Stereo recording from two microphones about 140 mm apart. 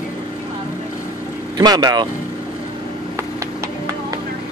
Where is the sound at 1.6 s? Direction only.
30° right (ahead or behind).